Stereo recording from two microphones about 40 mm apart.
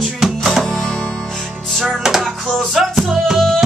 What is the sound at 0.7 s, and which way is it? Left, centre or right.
Music, centre.